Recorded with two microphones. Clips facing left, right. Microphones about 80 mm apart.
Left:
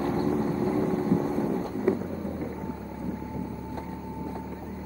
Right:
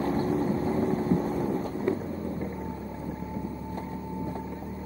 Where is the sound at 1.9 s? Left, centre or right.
Centre.